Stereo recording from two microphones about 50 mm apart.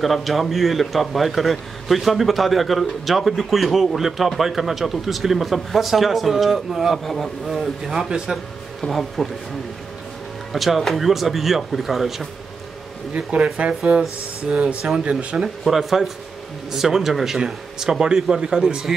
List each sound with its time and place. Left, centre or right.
0.0 s a man's voice: centre
10.5 s a man's voice: centre
13.1 s speech: right
15.6 s a man's voice: centre